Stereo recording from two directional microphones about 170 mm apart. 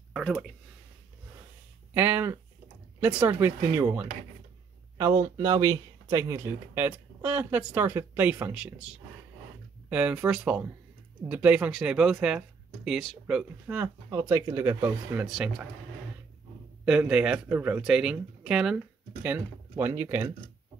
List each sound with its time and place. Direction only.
0.1 s speech: centre (ahead or behind)
2.0 s speech: 10° right (ahead or behind)
14.1 s speech: 15° right (ahead or behind)
16.8 s speech: 5° right (ahead or behind)